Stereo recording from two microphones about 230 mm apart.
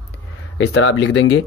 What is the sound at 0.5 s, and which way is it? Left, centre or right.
Speech, left.